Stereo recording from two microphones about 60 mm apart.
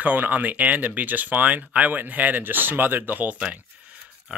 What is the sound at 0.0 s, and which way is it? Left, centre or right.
Speech, right.